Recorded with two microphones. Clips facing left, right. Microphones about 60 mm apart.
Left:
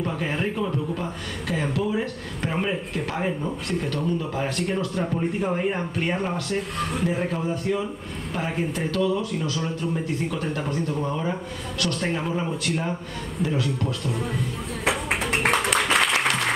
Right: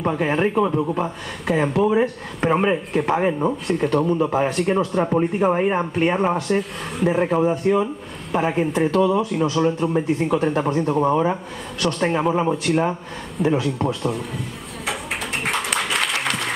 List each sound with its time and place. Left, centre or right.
0.0 s a man's voice: right
4.5 s speech: centre
4.7 s a man's voice: right